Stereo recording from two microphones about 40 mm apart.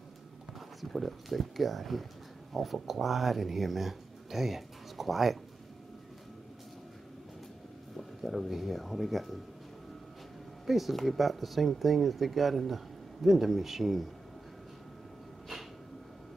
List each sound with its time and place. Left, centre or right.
0.6 s speech: centre
8.2 s speech: centre
10.7 s speech: centre